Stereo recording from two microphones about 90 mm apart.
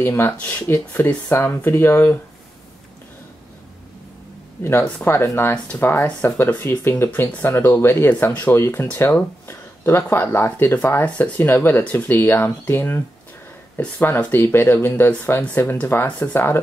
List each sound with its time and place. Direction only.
0.0 s speech: 25° left (ahead or behind)
5.0 s speech: 30° left (ahead or behind)
5.5 s speech: 15° left (ahead or behind)